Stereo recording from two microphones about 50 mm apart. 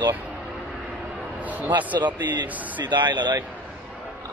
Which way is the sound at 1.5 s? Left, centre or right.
Right.